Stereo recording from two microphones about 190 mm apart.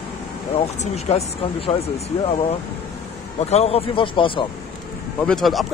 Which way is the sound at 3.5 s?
30° left (ahead or behind).